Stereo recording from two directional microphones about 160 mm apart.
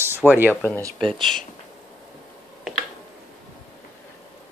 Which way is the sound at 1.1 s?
Centre (ahead or behind).